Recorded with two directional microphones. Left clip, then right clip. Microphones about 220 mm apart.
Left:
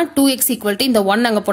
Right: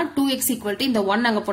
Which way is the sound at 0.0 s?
40° left (ahead or behind).